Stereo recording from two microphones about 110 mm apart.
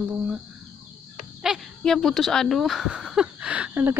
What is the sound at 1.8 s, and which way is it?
Speech, 5° left (ahead or behind).